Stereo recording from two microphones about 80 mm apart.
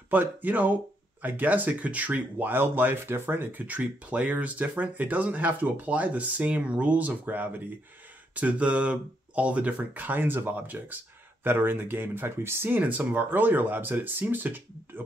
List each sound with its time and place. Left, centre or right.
0.1 s speech: right